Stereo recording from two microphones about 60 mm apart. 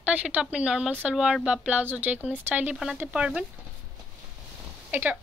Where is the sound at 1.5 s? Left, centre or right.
Right.